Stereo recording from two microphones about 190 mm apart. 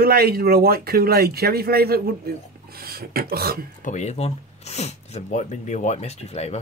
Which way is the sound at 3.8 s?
35° left (ahead or behind).